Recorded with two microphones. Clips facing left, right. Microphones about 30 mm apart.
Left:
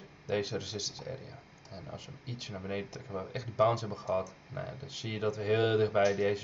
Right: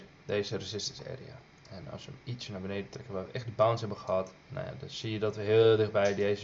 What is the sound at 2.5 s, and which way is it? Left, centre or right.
Speech, centre.